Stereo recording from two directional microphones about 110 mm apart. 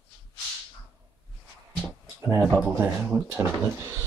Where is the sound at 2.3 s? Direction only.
25° right (ahead or behind).